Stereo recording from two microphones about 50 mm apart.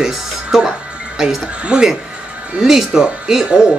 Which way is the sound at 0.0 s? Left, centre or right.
Centre.